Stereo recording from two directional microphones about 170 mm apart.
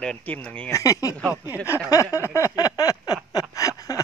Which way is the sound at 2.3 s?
20° left (ahead or behind).